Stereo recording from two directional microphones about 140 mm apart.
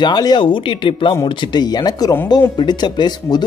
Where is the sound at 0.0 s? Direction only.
30° left (ahead or behind).